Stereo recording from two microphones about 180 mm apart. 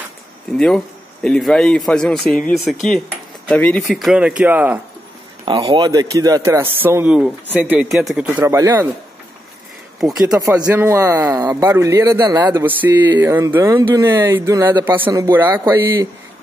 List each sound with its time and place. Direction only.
0.6 s speech: 5° left (ahead or behind)
5.4 s a man's voice: 25° right (ahead or behind); by 8.3 s centre (ahead or behind)
8.3 s a man's voice: 15° right (ahead or behind)
9.9 s speech: centre (ahead or behind)
10.7 s a man's voice: 10° right (ahead or behind)
12.4 s a man's voice: 10° right (ahead or behind)